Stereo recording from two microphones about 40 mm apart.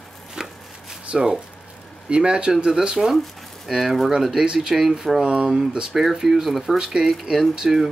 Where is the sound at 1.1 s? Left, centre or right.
Right.